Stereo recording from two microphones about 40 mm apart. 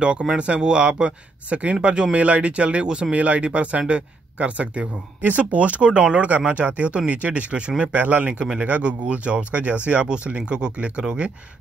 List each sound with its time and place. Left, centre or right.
0.4 s speech: right
7.9 s speech: right